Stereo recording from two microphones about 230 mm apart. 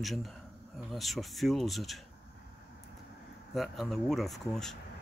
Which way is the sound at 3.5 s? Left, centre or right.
Centre.